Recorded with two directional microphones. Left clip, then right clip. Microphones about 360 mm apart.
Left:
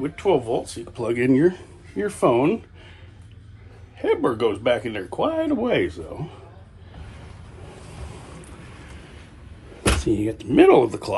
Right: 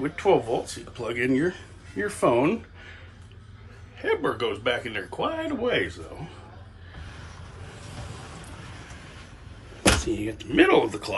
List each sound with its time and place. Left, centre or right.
0.0 s speech: centre
4.0 s speech: centre
10.0 s speech: centre